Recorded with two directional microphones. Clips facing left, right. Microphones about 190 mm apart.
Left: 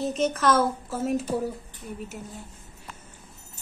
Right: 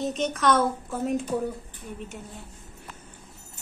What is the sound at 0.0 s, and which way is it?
Speech, centre (ahead or behind).